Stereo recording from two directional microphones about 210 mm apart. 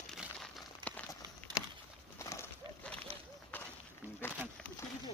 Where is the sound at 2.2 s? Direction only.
15° left (ahead or behind).